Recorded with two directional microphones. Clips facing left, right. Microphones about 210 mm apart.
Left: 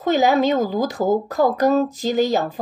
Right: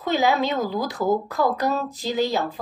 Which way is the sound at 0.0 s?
45° left (ahead or behind).